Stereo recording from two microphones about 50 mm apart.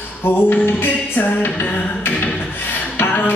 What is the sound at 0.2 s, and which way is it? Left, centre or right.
Music, left.